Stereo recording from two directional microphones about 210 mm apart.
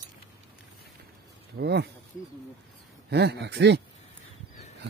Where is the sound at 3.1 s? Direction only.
50° right (ahead or behind).